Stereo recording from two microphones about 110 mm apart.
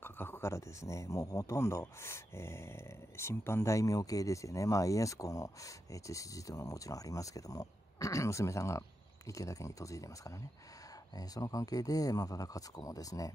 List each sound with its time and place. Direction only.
0.0 s speech: 20° left (ahead or behind)